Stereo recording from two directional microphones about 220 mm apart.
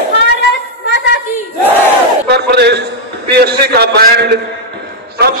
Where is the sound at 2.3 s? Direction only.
50° right (ahead or behind).